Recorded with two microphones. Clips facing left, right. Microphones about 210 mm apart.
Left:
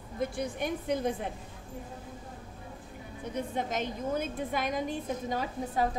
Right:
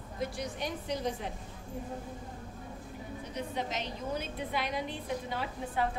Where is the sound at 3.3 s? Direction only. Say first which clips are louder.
Left 4 dB; 50° left (ahead or behind).